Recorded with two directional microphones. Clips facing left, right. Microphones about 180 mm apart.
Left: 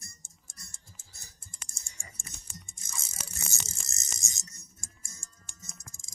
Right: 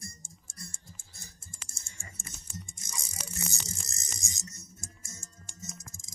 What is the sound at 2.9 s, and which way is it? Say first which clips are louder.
Music: even; 15° right (ahead or behind).